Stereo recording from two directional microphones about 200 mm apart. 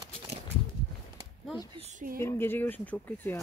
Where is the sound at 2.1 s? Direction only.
10° left (ahead or behind).